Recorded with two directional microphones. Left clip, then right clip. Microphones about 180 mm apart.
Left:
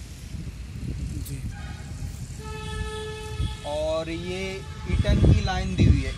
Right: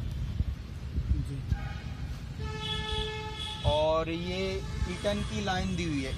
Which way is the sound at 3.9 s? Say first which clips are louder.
Left 1 dB; 15° right (ahead or behind).